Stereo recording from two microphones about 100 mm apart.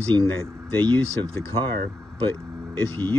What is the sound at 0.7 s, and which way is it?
Speech, 15° left (ahead or behind).